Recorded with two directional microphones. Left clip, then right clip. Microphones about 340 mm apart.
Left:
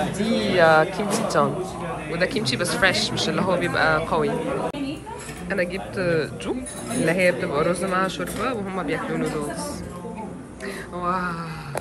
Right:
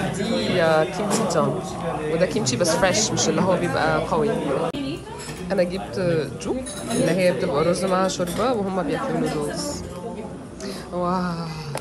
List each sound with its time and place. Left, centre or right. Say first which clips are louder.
0.2 s speech: left 3 dB; centre
5.5 s speech: right 3 dB; centre
11.1 s speech: left 2 dB; centre